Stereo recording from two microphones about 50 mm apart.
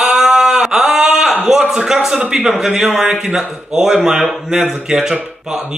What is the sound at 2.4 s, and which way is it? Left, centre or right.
Speech, centre.